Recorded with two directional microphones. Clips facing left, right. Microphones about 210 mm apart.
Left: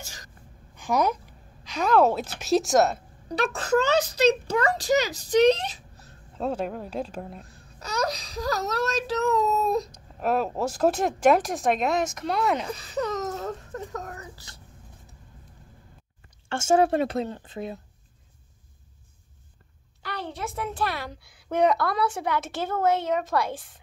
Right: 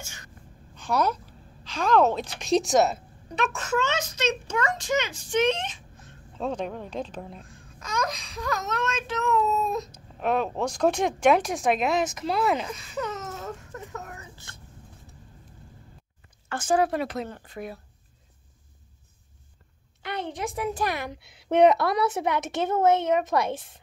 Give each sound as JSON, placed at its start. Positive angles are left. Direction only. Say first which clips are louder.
{"t": 0.0, "sound": "a sound", "louder": "even", "side_deg": 35}
{"t": 0.7, "sound": "a woman's voice", "louder": "left 1 dB", "side_deg": 15}
{"t": 3.3, "sound": "speech", "louder": "left 3 dB", "side_deg": 35}
{"t": 6.3, "sound": "speech", "louder": "left 1 dB", "side_deg": 5}
{"t": 7.4, "sound": "speech", "louder": "left 2 dB", "side_deg": 35}
{"t": 9.8, "sound": "speech", "louder": "even", "side_deg": 0}
{"t": 12.6, "sound": "speech", "louder": "left 3 dB", "side_deg": 35}
{"t": 16.4, "sound": "speech", "louder": "left 3 dB", "side_deg": 25}
{"t": 20.0, "sound": "a woman's voice", "louder": "right 2 dB", "side_deg": -20}